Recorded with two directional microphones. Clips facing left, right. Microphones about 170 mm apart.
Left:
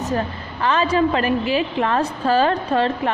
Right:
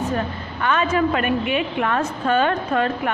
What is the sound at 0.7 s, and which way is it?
A woman's voice, 30° left (ahead or behind).